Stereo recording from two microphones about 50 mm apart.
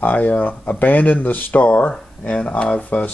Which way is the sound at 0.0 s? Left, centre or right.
Left.